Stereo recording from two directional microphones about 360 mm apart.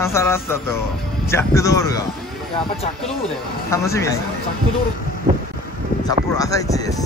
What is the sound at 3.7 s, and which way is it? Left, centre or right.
Speech, centre.